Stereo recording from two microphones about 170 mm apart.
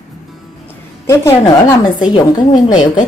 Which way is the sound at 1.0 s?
20° left (ahead or behind).